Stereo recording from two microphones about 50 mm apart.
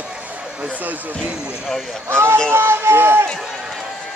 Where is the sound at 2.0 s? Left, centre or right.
Right.